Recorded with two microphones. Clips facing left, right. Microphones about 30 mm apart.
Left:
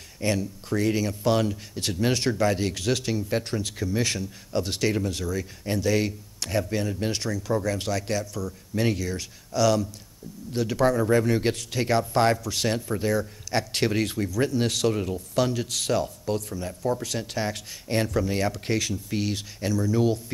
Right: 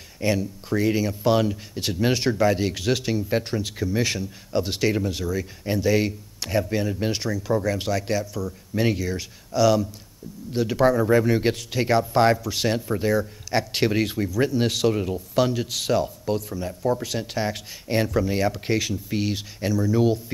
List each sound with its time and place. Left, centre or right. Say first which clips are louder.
0.2 s speech: right 3 dB; centre